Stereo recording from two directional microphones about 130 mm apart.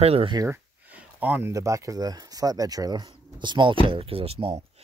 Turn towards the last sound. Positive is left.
turn(degrees=-50)  # may be behind; listen again after turning